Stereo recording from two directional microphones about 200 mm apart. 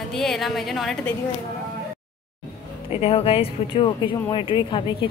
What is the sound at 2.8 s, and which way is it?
Speech, 30° left (ahead or behind).